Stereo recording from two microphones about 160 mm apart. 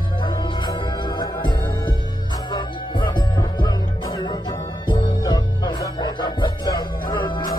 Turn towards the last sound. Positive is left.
turn(degrees=25)  # may be behind; listen again after turning